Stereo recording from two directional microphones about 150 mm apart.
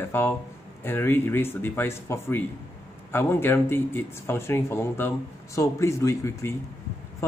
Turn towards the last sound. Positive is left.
turn(degrees=20)  # may be behind; listen again after turning